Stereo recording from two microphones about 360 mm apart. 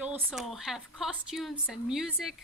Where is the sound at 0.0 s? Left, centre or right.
Centre.